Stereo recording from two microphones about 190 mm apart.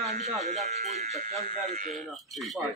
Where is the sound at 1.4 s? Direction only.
45° right (ahead or behind).